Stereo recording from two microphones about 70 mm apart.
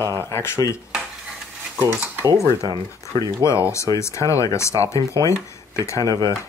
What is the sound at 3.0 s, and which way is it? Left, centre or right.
Speech, left.